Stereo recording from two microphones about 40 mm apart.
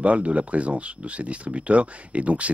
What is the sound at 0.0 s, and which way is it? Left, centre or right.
Speech, right.